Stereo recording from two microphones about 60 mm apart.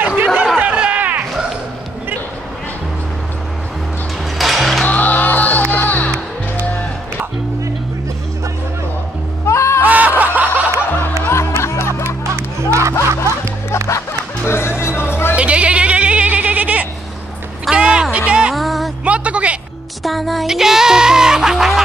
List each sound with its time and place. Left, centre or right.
0.0 s a sound: right
4.4 s music: centre
4.8 s music: left
9.5 s music: left
9.8 s snicker: right
11.6 s music: left
12.4 s music: right
12.9 s music: left
15.3 s a sound: right
18.1 s music: centre
18.5 s a sound: centre
19.0 s a sound: right
20.0 s music: centre